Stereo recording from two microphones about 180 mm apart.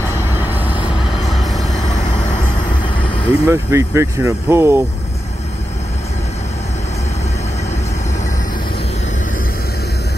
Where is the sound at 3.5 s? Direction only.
15° right (ahead or behind).